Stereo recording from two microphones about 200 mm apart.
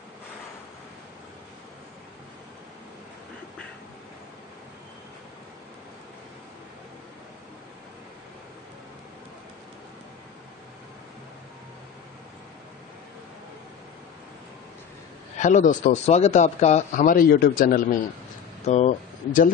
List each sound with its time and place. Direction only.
15.3 s speech: 35° left (ahead or behind)
18.7 s speech: 35° left (ahead or behind)